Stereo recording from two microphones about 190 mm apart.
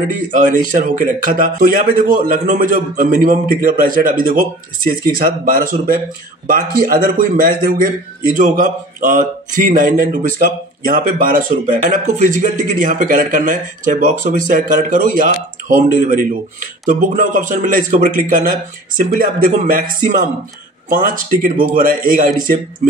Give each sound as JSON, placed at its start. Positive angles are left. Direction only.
{"t": 0.1, "sound": "speech", "side_deg": -45}